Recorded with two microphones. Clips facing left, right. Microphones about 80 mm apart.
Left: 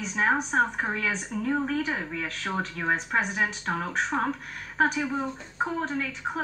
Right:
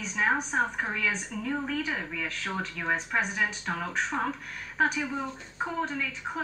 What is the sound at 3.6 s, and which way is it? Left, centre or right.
Speech, left.